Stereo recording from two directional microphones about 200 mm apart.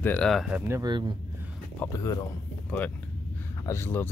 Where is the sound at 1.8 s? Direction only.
15° left (ahead or behind).